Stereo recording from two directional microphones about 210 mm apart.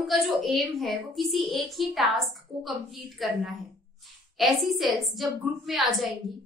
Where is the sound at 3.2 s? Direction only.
Centre (ahead or behind).